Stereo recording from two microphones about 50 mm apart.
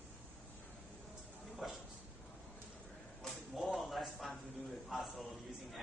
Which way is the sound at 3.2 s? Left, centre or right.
Centre.